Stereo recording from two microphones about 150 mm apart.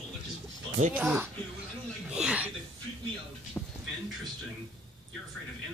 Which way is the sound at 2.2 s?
5° right (ahead or behind).